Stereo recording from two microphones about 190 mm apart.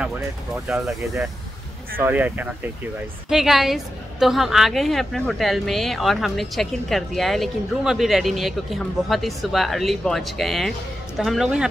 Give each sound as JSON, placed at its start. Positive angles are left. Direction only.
{"t": 0.7, "sound": "a woman's voice", "side_deg": -5}